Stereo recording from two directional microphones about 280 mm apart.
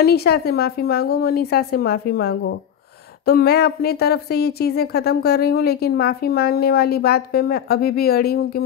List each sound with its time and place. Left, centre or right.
0.0 s speech: left